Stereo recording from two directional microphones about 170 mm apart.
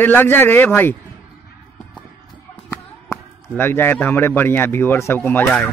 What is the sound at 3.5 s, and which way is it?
Speech, 15° left (ahead or behind).